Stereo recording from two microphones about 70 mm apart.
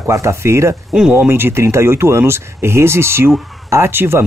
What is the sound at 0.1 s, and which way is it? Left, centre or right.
Speech, right.